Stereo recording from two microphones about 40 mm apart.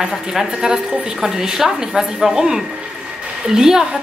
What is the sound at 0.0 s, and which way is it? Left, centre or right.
A woman's voice, centre.